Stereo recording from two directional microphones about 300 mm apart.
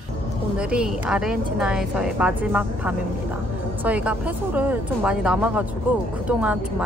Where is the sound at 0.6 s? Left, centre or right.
Centre.